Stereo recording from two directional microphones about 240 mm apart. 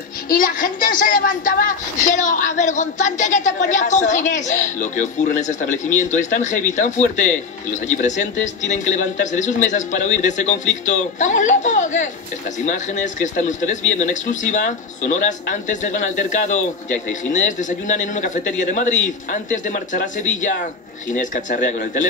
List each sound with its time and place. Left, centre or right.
0.3 s speech: left